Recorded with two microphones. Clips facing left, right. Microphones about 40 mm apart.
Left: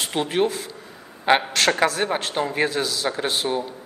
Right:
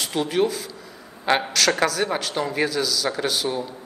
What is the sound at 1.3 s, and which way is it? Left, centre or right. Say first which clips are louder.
Speech: left 2 dB; centre.